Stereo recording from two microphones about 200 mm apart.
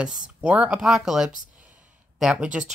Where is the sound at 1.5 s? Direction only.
5° right (ahead or behind).